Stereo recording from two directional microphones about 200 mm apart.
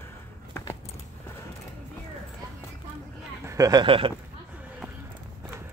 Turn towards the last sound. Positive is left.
turn(degrees=-25)  # may be behind; listen again after turning